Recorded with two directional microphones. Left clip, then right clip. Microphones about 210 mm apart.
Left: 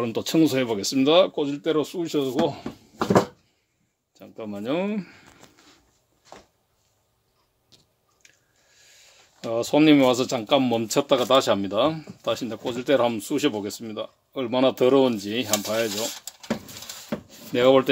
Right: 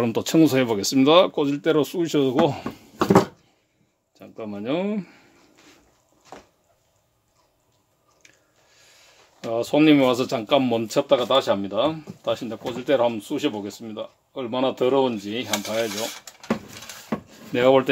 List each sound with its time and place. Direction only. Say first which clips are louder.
0.0 s speech: right 3 dB; 10° right (ahead or behind); by 3.2 s 30° right (ahead or behind)
4.1 s speech: right 1 dB; 5° left (ahead or behind)
8.2 s chewing: right 2 dB; 5° right (ahead or behind)
8.7 s a sound: even; centre (ahead or behind)
9.5 s speech: even; 20° left (ahead or behind)
15.6 s stir: even; 30° left (ahead or behind)
17.3 s a sound: even; 5° left (ahead or behind)